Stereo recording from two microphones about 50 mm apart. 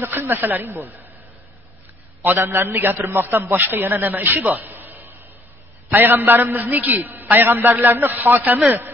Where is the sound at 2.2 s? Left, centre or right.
Right.